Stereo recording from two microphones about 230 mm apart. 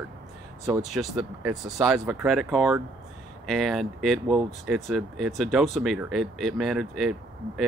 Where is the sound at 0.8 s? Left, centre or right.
Centre.